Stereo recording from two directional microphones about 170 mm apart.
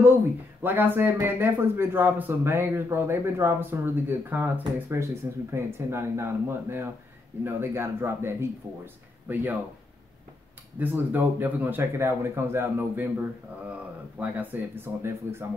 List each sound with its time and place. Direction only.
0.7 s a man's voice: 10° right (ahead or behind)
10.8 s a man's voice: 10° right (ahead or behind)
14.2 s a man's voice: 10° right (ahead or behind)